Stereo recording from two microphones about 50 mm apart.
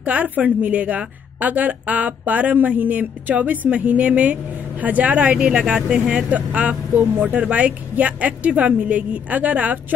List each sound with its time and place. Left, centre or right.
0.0 s a woman's voice: right
5.2 s speech: centre